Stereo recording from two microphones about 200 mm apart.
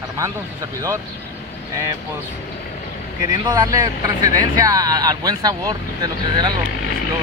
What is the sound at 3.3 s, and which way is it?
Speech, 20° right (ahead or behind).